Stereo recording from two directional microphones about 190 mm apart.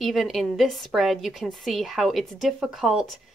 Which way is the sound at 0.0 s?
Centre (ahead or behind).